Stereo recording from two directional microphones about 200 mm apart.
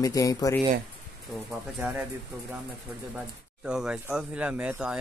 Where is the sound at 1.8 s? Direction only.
10° right (ahead or behind).